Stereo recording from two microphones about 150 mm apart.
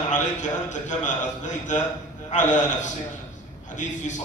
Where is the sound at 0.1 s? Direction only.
55° left (ahead or behind).